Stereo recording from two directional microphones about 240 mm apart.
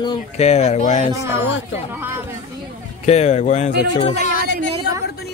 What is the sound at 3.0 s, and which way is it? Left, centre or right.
Speech, left.